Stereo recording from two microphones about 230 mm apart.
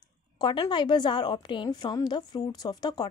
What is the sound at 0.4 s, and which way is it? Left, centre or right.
A woman's voice, centre.